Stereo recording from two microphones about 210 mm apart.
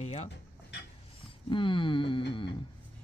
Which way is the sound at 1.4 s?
25° left (ahead or behind).